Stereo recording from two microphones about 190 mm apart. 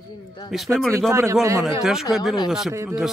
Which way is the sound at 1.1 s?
15° right (ahead or behind).